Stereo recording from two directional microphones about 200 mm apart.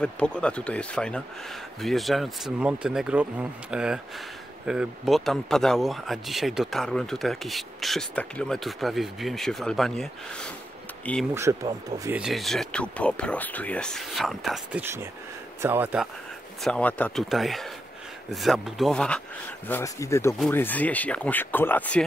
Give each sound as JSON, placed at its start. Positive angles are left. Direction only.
{"t": 0.0, "sound": "speech", "side_deg": 5}
{"t": 11.5, "sound": "speech", "side_deg": -15}
{"t": 12.0, "sound": "speech", "side_deg": -5}
{"t": 16.6, "sound": "speech", "side_deg": 5}
{"t": 19.7, "sound": "speech", "side_deg": 15}